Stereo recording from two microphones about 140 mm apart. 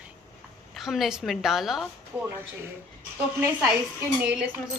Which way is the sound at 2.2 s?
15° right (ahead or behind).